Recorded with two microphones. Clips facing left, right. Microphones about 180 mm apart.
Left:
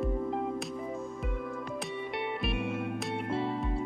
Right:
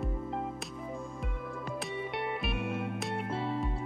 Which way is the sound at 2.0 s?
Centre (ahead or behind).